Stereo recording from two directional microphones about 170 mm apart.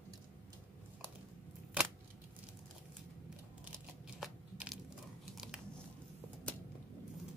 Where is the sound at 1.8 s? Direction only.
5° right (ahead or behind).